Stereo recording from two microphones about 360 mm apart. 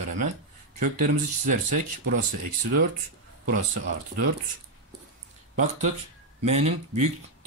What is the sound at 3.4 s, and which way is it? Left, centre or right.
Speech, right.